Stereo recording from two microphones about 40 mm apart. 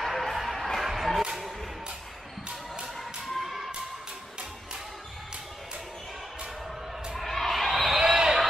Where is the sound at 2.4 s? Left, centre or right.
Right.